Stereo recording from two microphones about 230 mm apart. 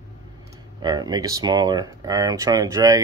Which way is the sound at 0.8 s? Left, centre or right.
Centre.